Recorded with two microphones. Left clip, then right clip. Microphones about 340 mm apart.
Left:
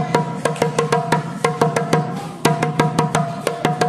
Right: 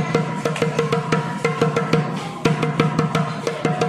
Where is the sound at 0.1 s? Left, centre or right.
Left.